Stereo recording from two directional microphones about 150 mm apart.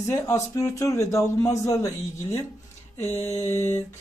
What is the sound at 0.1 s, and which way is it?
A man's voice, 20° left (ahead or behind).